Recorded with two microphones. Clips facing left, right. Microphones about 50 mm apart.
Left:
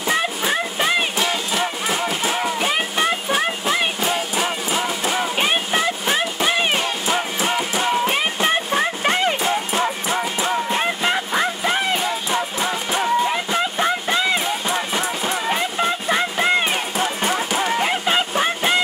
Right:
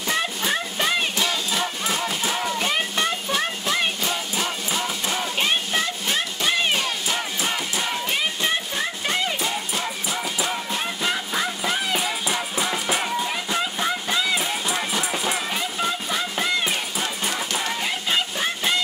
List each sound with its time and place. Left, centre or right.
0.1 s a sound: centre
1.1 s music: left
12.3 s music: centre
13.2 s a sound: left
14.7 s music: centre
15.4 s music: left
17.7 s honk: left